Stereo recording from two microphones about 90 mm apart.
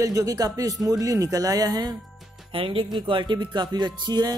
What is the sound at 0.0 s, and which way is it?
Speech, 40° right (ahead or behind).